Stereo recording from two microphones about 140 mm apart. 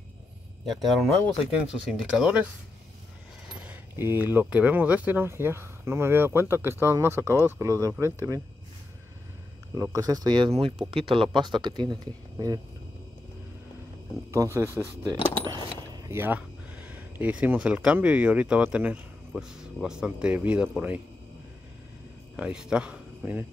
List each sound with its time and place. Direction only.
0.7 s speech: centre (ahead or behind)
3.5 s speech: 15° right (ahead or behind)
9.8 s speech: 25° right (ahead or behind)
14.3 s speech: 20° right (ahead or behind)
15.4 s a sound: 30° right (ahead or behind)
16.1 s speech: 15° right (ahead or behind)
22.4 s speech: 5° right (ahead or behind)